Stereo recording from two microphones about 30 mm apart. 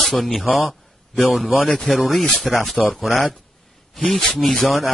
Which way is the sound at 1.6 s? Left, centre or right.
Centre.